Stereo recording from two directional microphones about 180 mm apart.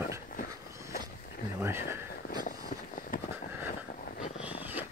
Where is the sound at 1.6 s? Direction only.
15° right (ahead or behind).